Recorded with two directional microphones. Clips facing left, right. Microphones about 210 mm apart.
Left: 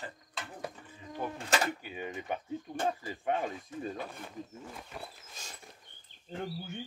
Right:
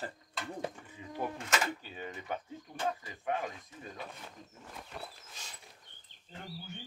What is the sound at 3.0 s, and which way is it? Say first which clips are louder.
Speech: left 3 dB; 30° left (ahead or behind).